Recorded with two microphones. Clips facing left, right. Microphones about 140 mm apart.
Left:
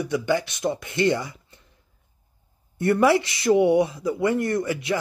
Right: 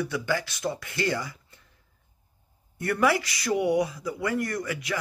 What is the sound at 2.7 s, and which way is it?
Speech, 25° left (ahead or behind).